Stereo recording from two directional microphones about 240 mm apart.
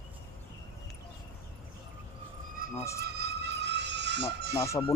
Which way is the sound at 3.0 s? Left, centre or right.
Right.